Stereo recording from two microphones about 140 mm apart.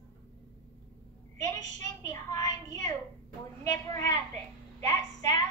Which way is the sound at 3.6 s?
25° left (ahead or behind).